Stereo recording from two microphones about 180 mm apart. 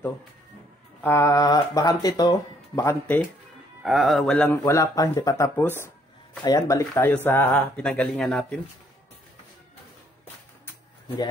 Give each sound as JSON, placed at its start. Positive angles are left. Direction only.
{"t": 1.0, "sound": "speech", "side_deg": 15}
{"t": 3.8, "sound": "speech", "side_deg": 0}